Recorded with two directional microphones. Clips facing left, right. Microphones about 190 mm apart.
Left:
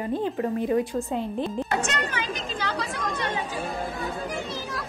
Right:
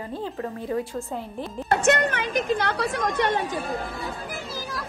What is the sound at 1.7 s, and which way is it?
Speech, 65° right (ahead or behind).